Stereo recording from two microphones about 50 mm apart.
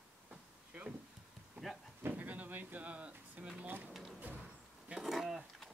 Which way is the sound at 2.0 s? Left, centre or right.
Right.